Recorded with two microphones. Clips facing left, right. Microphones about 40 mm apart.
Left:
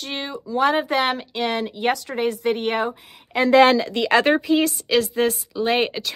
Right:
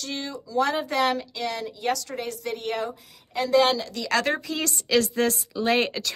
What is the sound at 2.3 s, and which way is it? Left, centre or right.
Speech, left.